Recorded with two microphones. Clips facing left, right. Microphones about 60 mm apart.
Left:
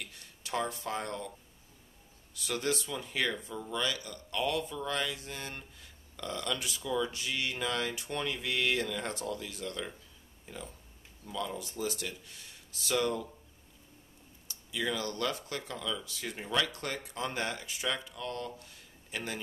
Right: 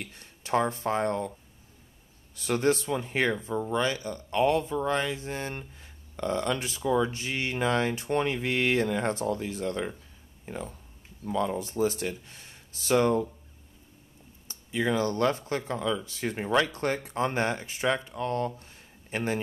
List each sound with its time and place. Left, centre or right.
0.0 s speech: right
2.3 s speech: right
14.5 s speech: right